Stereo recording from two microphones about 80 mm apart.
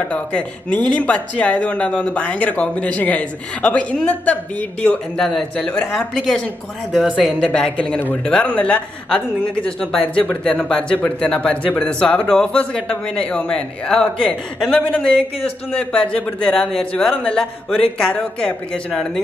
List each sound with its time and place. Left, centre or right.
0.1 s speech: centre